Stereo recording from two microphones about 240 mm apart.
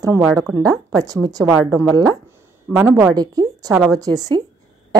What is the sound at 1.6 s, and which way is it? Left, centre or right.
Speech, centre.